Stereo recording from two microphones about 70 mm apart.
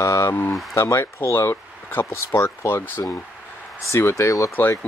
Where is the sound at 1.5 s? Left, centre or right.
Left.